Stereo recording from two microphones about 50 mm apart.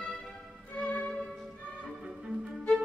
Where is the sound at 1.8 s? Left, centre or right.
Centre.